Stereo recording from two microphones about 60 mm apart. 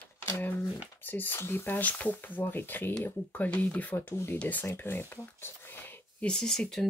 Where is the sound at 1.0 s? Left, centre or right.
Left.